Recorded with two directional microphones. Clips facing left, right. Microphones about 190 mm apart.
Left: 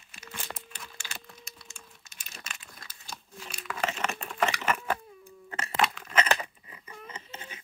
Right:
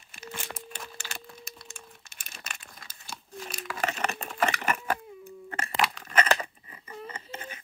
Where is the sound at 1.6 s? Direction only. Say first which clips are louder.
Right 4 dB; 50° right (ahead or behind).